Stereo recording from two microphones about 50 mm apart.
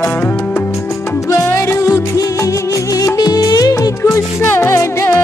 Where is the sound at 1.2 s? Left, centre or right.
Left.